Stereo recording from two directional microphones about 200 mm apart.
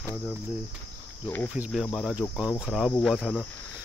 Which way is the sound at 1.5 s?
5° right (ahead or behind).